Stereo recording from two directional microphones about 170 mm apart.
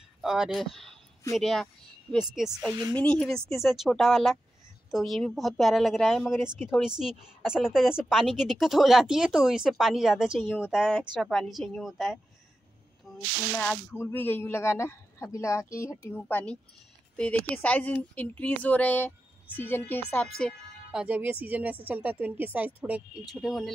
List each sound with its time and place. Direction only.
0.2 s a woman's voice: centre (ahead or behind)
13.1 s snake: 20° left (ahead or behind)
13.6 s a woman's voice: 5° left (ahead or behind)